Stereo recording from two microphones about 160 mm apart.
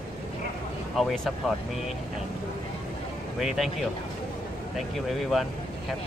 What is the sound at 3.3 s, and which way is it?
Speech, centre (ahead or behind).